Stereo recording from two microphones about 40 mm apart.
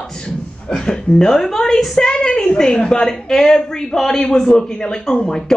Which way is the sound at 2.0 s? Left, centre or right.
Left.